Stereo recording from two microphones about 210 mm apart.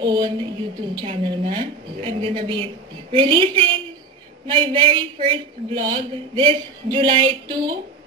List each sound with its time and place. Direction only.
0.0 s a woman's voice: 20° right (ahead or behind)